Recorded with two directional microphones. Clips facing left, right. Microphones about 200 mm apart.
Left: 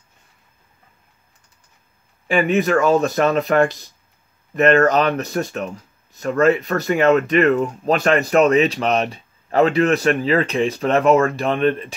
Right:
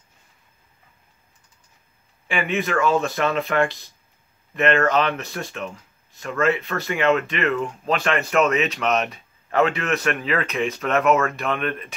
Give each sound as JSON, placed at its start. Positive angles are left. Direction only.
{"t": 2.2, "sound": "speech", "side_deg": 40}